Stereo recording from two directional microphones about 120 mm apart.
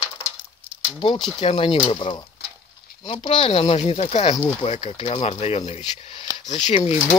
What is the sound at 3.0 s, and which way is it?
Speech, 50° left (ahead or behind).